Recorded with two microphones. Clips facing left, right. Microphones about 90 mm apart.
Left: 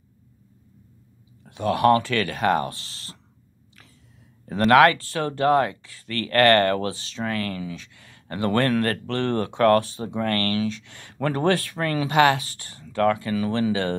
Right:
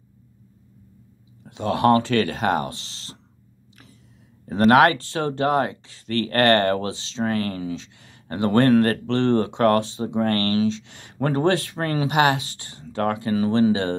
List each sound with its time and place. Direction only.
1.4 s speech: 25° right (ahead or behind)
4.6 s speech: 25° right (ahead or behind)